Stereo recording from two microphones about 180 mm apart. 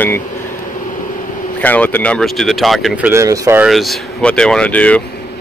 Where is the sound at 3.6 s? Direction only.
Centre (ahead or behind).